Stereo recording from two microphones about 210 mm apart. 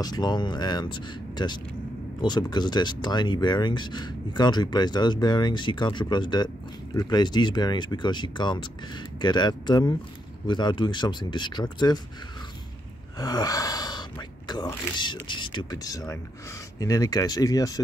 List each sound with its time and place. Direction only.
0.0 s speech: 20° left (ahead or behind)
13.2 s speech: 20° left (ahead or behind)